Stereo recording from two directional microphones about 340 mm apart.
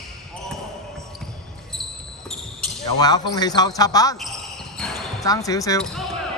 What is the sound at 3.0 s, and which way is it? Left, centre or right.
Speech, centre.